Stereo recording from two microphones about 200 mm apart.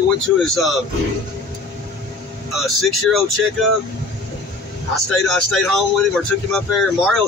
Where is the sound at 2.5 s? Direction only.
Centre (ahead or behind).